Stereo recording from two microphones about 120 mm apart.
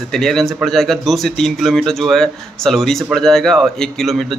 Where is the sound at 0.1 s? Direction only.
5° left (ahead or behind).